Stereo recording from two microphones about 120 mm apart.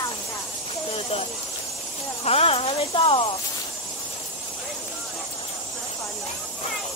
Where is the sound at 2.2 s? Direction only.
55° left (ahead or behind).